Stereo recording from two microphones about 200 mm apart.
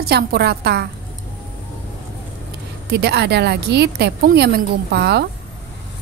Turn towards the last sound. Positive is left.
turn(degrees=-55)  # may be behind; listen again after turning